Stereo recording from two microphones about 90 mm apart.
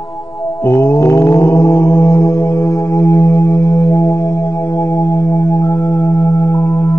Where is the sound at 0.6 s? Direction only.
30° left (ahead or behind).